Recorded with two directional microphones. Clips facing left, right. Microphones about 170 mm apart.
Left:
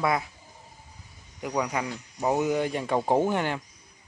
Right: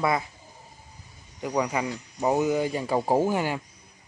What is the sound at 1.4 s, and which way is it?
Speech, 5° right (ahead or behind).